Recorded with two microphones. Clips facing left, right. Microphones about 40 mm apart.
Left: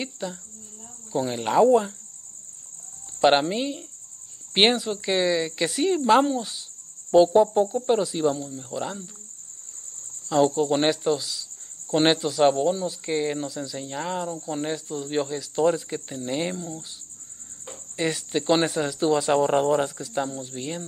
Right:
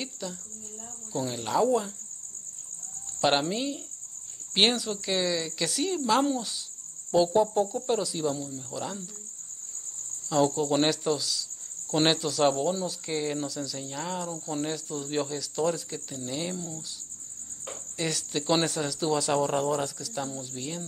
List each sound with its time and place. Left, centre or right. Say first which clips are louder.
0.0 s speech: left 5 dB; left
3.2 s speech: left 6 dB; left
6.2 s speech: left 3 dB; centre
7.1 s speech: left 6 dB; left
8.4 s speech: left 4 dB; centre
10.2 s speech: left 4 dB; centre; by 16.5 s left
16.5 s speech: left 3 dB; centre
17.9 s speech: left 5 dB; left